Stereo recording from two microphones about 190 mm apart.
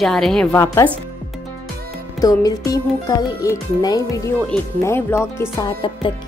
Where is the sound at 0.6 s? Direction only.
15° left (ahead or behind).